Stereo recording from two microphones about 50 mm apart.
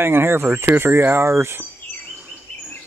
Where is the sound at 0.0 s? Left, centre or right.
Right.